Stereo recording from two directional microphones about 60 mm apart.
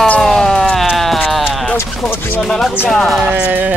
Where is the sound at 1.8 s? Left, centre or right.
Left.